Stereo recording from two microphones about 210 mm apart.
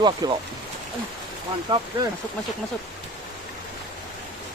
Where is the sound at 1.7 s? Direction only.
25° right (ahead or behind).